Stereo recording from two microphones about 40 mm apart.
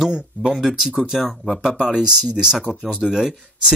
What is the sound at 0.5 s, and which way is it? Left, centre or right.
Speech, centre.